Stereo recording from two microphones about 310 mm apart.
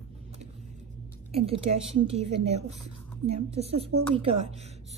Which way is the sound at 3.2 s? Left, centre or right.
Centre.